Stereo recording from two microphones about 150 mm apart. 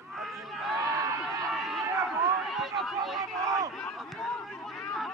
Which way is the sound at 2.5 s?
Centre (ahead or behind).